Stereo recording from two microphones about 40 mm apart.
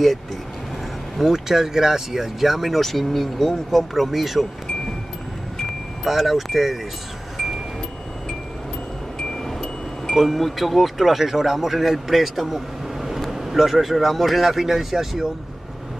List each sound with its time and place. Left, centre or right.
1.2 s speech: centre
6.0 s speech: centre
7.3 s chime: centre
9.2 s wind chime: centre
10.1 s speech: centre